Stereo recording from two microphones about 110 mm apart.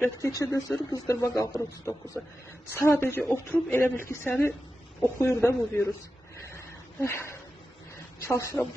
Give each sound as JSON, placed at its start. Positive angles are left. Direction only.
{"t": 0.3, "sound": "a woman's voice", "side_deg": 30}
{"t": 6.4, "sound": "a sound", "side_deg": 25}
{"t": 8.3, "sound": "a woman's voice", "side_deg": 25}